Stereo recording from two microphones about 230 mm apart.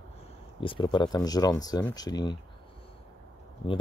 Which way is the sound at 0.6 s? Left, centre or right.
Left.